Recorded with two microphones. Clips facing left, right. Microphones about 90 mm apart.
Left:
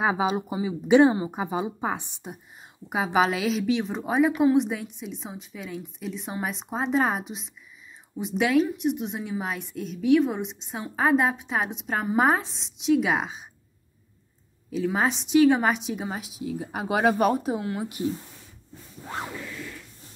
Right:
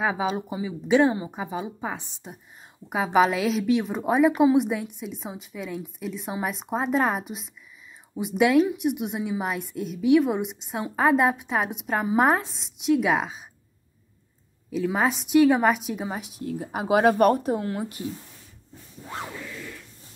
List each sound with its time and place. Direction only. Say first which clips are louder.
0.0 s a woman's voice: left 1 dB; 15° left (ahead or behind)
2.9 s a woman's voice: right 2 dB; 5° left (ahead or behind)
14.8 s a woman's voice: right 1 dB; centre (ahead or behind)